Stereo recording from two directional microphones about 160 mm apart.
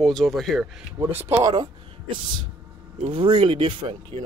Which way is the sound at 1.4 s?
30° right (ahead or behind).